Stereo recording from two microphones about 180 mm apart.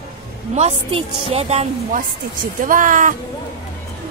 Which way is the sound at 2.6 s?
45° right (ahead or behind).